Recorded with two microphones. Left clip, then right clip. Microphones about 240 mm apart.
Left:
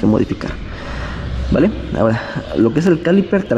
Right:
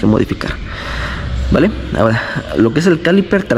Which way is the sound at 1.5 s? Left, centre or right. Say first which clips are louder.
Right 2 dB; centre.